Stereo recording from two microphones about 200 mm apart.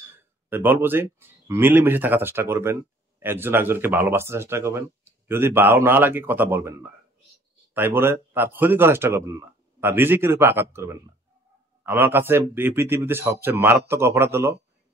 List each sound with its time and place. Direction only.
0.5 s speech: 10° right (ahead or behind)